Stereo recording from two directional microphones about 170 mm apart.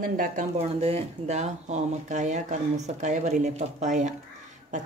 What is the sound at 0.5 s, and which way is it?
Speech, 35° right (ahead or behind).